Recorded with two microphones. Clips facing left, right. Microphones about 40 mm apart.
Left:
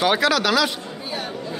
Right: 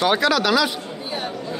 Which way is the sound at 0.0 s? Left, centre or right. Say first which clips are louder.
Even; centre.